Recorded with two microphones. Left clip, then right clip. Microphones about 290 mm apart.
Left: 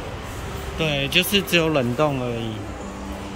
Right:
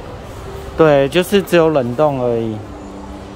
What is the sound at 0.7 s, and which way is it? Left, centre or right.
Speech, centre.